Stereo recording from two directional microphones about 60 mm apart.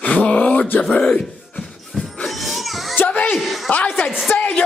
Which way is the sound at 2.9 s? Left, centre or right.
Left.